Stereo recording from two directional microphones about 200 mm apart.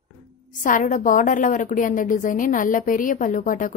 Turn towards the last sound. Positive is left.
turn(degrees=40)  # may be behind; listen again after turning